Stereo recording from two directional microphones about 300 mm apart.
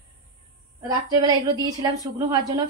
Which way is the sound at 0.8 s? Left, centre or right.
Centre.